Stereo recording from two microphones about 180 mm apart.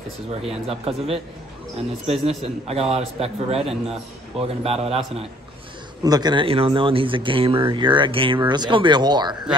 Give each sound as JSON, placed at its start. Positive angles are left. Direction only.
{"t": 0.4, "sound": "a man's voice", "side_deg": -35}
{"t": 6.0, "sound": "speech", "side_deg": -20}